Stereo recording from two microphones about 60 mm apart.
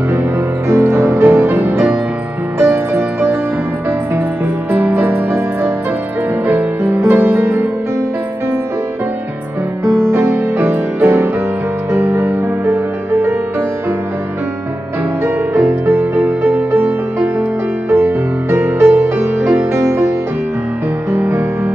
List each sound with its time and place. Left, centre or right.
0.1 s music: right
4.6 s music: right
4.9 s music: right
9.8 s music: right
15.2 s music: right
21.1 s music: right